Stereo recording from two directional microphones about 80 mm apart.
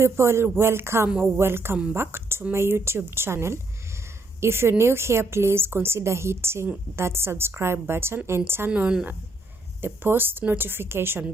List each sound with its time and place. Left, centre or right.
0.0 s a woman's voice: right